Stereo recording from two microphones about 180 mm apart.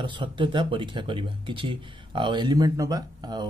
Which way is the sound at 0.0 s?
25° right (ahead or behind).